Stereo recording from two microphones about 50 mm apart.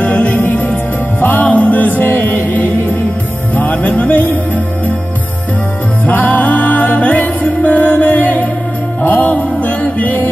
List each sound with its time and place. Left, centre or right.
0.0 s music: left
6.0 s music: left